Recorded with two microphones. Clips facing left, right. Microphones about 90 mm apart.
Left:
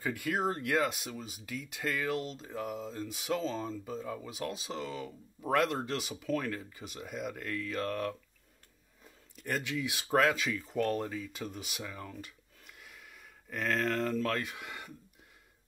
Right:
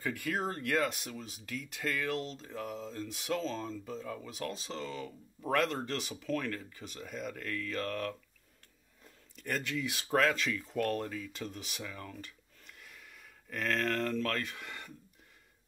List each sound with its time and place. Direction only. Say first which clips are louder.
0.0 s speech: left 2 dB; 5° left (ahead or behind)